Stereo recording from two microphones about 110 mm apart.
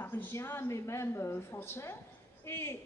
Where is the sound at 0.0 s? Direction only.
20° left (ahead or behind).